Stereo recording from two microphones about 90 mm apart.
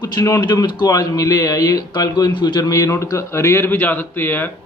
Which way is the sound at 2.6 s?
35° left (ahead or behind).